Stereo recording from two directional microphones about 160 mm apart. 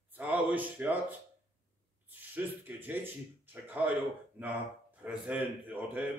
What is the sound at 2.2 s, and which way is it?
A man's voice, 10° right (ahead or behind).